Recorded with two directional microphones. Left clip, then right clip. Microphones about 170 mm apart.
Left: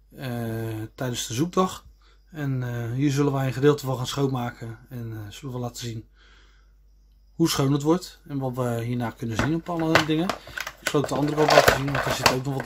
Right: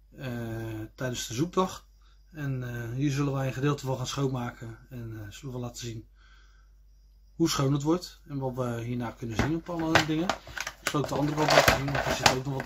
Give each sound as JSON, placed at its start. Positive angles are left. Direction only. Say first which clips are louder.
{"t": 0.2, "sound": "a sound", "louder": "left 5 dB", "side_deg": 25}
{"t": 2.3, "sound": "speech", "louder": "left 5 dB", "side_deg": 30}
{"t": 7.3, "sound": "speech", "louder": "left 4 dB", "side_deg": 25}
{"t": 10.5, "sound": "computer keyboard", "louder": "left 5 dB", "side_deg": 0}
{"t": 11.3, "sound": "speech", "louder": "left 5 dB", "side_deg": 0}